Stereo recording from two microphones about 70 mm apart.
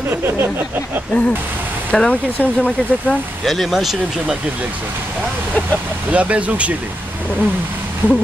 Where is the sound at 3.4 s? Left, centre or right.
Centre.